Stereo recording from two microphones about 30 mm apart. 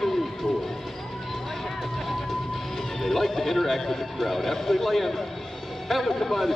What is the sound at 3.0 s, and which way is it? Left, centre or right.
A man's voice, centre.